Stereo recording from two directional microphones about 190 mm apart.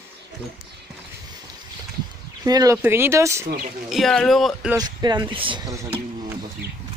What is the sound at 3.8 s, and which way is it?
Speech, centre (ahead or behind).